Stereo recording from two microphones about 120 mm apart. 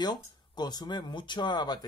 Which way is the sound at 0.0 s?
35° left (ahead or behind).